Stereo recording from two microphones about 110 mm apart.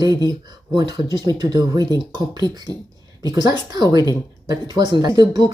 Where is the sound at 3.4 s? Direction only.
35° right (ahead or behind).